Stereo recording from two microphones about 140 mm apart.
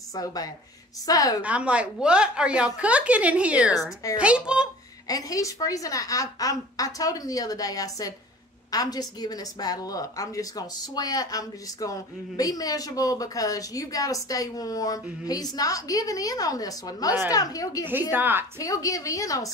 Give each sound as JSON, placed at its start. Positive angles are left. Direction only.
{"t": 0.1, "sound": "a woman's voice", "side_deg": 25}
{"t": 1.4, "sound": "a woman's voice", "side_deg": -10}
{"t": 5.0, "sound": "a woman's voice", "side_deg": 25}
{"t": 18.1, "sound": "a woman's voice", "side_deg": -15}
{"t": 18.6, "sound": "a woman's voice", "side_deg": 25}